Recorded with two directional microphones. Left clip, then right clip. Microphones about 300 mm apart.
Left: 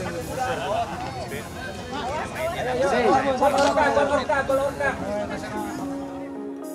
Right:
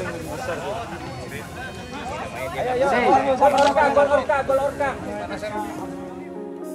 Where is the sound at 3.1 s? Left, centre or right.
Right.